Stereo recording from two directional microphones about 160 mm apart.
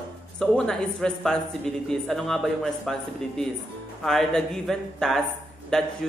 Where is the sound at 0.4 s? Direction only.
5° left (ahead or behind).